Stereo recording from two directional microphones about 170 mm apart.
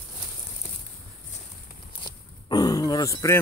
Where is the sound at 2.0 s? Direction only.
25° left (ahead or behind).